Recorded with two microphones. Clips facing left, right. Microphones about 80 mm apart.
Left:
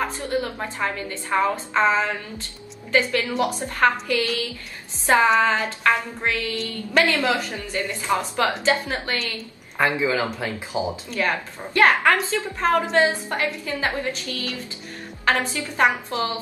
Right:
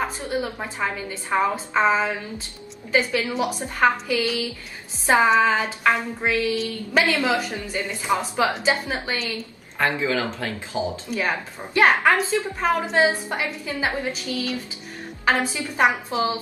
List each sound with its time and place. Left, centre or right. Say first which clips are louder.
0.0 s a woman's voice: left 1 dB; centre
9.8 s speech: left 1 dB; centre
11.1 s a woman's voice: left 1 dB; centre